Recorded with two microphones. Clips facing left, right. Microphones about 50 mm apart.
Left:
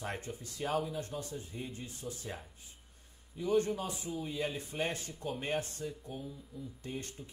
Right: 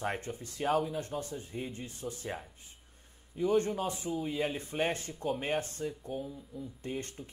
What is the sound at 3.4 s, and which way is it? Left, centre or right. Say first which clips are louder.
Speech: right 2 dB; right.